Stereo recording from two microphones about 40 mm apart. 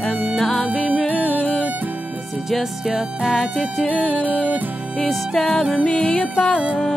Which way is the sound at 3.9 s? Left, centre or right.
Left.